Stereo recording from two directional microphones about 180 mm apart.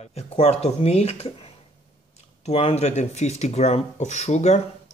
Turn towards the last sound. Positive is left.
turn(degrees=40)  # may be behind; listen again after turning